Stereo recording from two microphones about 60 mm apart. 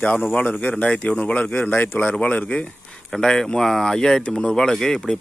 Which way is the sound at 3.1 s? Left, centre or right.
Centre.